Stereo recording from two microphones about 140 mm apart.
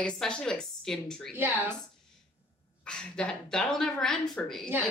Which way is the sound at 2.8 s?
5° left (ahead or behind).